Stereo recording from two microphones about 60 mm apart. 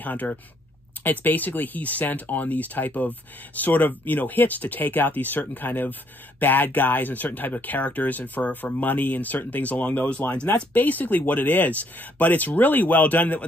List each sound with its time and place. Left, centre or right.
0.0 s speech: left